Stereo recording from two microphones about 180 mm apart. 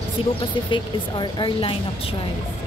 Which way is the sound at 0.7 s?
25° left (ahead or behind).